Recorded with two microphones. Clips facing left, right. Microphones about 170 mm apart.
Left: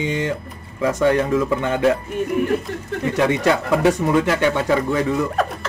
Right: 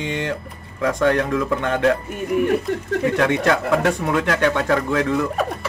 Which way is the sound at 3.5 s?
Centre (ahead or behind).